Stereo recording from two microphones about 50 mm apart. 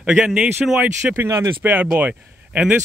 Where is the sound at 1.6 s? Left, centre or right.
Right.